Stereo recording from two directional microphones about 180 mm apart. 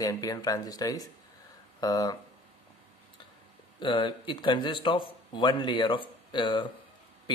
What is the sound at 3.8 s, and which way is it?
Speech, 25° left (ahead or behind).